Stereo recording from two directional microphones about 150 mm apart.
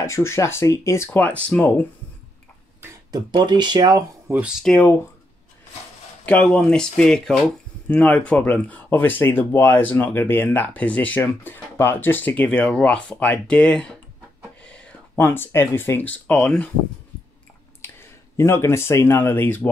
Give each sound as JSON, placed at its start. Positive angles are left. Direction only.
{"t": 0.0, "sound": "speech", "side_deg": 20}
{"t": 3.1, "sound": "speech", "side_deg": -30}
{"t": 4.3, "sound": "speech", "side_deg": -10}
{"t": 4.6, "sound": "speech", "side_deg": 10}
{"t": 6.2, "sound": "speech", "side_deg": 10}
{"t": 17.8, "sound": "speech", "side_deg": 20}